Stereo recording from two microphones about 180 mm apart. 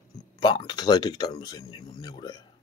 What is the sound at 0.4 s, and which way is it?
Speech, 25° left (ahead or behind).